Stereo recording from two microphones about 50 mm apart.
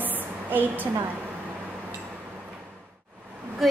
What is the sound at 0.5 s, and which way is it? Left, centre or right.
Speech, right.